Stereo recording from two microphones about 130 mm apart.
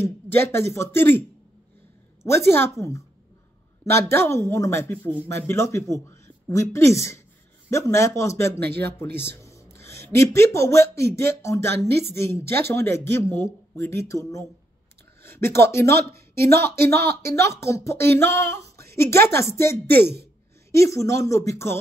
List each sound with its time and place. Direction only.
0.0 s speech: 20° left (ahead or behind)
2.2 s a woman's voice: 20° left (ahead or behind)
3.8 s speech: 20° left (ahead or behind)